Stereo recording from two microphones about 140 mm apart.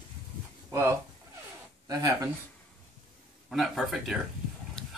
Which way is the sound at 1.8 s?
25° right (ahead or behind).